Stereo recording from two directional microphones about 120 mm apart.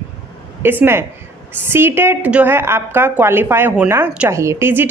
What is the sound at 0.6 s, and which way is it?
A woman's voice, 20° right (ahead or behind).